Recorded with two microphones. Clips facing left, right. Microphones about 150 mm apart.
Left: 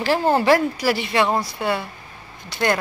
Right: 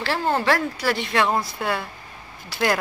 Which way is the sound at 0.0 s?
15° left (ahead or behind).